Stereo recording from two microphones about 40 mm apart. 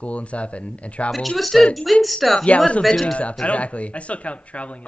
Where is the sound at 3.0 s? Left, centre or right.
Left.